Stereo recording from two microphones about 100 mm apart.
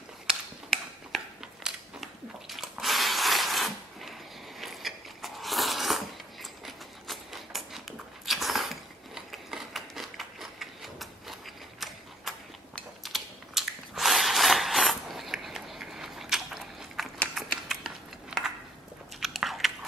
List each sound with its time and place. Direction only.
0.3 s a sound: 5° right (ahead or behind)
8.3 s gears: centre (ahead or behind)
13.0 s ratchet: centre (ahead or behind)
17.6 s biting: 5° right (ahead or behind)